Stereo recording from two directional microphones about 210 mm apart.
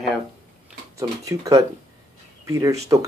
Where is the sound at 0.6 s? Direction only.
15° right (ahead or behind).